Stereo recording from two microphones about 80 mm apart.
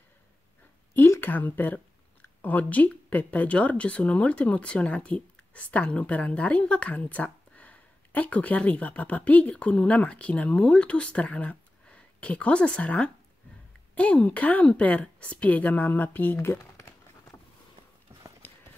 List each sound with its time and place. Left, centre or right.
1.2 s a woman's voice: left
18.4 s clip-clop: left